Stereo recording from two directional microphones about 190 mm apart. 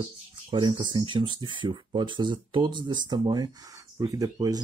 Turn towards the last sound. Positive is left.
turn(degrees=-20)  # may be behind; listen again after turning